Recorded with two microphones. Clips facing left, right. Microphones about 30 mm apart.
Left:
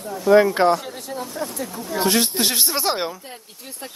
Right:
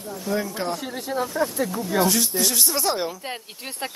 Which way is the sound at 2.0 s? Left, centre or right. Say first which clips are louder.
Left 6 dB; left.